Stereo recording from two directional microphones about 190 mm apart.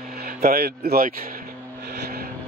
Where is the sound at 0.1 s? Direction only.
50° right (ahead or behind).